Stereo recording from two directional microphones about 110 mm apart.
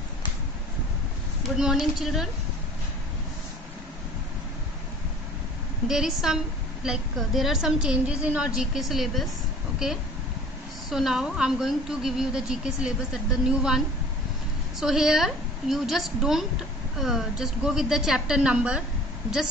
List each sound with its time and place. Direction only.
1.6 s a woman's voice: 5° right (ahead or behind)
5.9 s a woman's voice: 5° right (ahead or behind)
10.9 s a woman's voice: 5° right (ahead or behind)